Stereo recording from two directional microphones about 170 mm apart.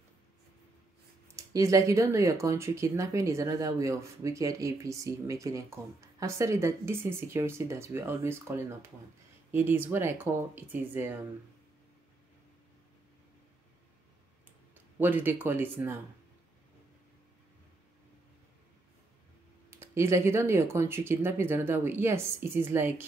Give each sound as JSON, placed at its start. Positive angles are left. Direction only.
{"t": 1.3, "sound": "speech", "side_deg": -20}
{"t": 15.0, "sound": "speech", "side_deg": -10}
{"t": 19.8, "sound": "speech", "side_deg": -15}